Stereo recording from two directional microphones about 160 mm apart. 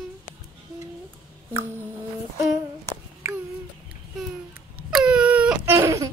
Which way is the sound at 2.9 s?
15° right (ahead or behind).